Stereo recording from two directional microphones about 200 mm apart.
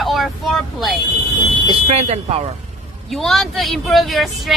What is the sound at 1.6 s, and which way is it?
Speech, 30° right (ahead or behind).